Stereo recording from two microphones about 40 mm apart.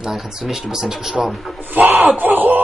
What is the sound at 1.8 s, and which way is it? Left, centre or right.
Speech, right.